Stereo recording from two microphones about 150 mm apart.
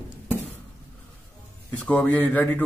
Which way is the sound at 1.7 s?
10° left (ahead or behind).